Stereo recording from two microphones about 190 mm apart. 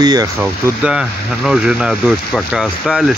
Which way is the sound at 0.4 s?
5° right (ahead or behind).